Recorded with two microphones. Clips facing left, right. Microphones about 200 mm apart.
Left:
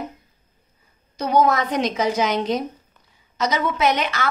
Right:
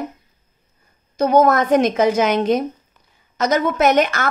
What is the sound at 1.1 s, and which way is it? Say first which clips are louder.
A woman's voice: right 4 dB; 50° right (ahead or behind).